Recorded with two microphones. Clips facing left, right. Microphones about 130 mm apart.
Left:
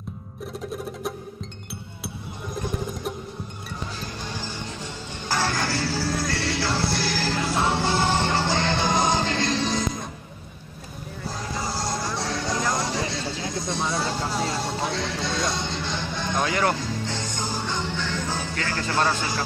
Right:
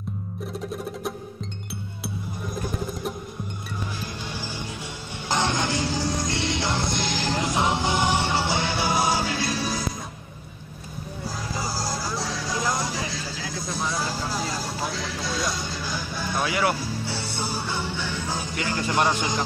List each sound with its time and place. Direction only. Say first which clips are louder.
4.2 s music: even; 15° right (ahead or behind)
11.2 s music: left 1 dB; 5° right (ahead or behind)
13.2 s a sound: left 3 dB; 25° left (ahead or behind)
13.6 s a sound: left 2 dB; centre (ahead or behind)
13.9 s music: left 2 dB; centre (ahead or behind)
15.5 s music: left 2 dB; 25° left (ahead or behind)
16.3 s music: left 1 dB; 10° right (ahead or behind)